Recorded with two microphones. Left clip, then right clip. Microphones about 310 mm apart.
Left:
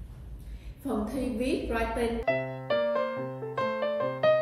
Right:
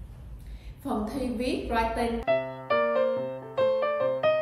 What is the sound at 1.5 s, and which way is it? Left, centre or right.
Speech, centre.